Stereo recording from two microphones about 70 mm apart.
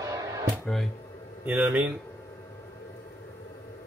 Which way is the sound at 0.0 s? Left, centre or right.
Right.